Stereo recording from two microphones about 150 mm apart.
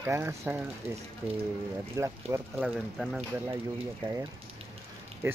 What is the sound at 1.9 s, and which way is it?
Speech, 20° right (ahead or behind).